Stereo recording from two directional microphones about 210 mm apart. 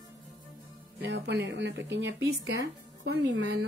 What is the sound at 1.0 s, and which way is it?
A woman's voice, 55° right (ahead or behind).